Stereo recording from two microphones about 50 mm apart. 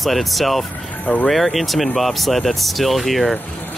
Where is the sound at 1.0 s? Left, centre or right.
Left.